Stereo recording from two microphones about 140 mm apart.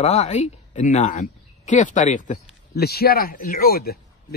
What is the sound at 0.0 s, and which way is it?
A woman's voice, 50° left (ahead or behind).